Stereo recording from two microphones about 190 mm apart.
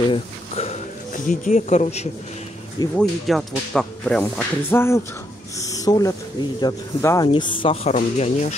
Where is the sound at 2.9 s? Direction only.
Centre (ahead or behind).